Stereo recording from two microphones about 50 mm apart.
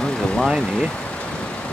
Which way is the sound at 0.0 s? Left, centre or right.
Centre.